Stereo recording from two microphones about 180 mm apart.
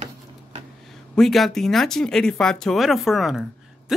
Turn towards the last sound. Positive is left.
turn(degrees=0)  # may be behind; listen again after turning